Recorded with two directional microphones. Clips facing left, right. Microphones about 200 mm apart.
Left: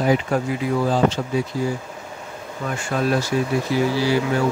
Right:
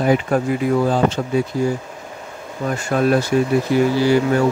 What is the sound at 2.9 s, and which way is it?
Speech, 45° right (ahead or behind).